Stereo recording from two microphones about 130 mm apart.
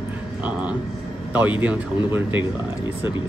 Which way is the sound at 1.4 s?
15° right (ahead or behind).